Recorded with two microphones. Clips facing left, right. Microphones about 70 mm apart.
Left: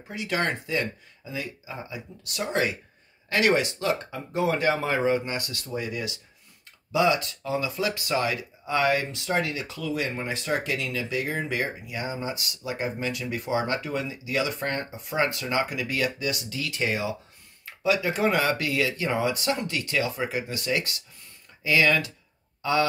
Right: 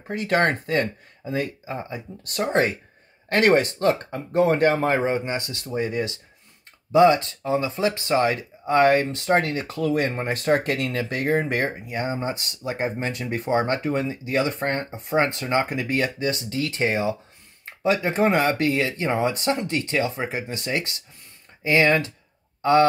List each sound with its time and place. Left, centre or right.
0.1 s speech: right